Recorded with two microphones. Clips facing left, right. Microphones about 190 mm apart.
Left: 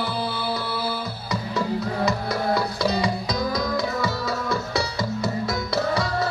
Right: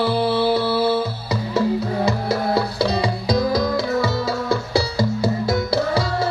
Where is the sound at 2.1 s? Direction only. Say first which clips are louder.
Right 2 dB; 30° right (ahead or behind).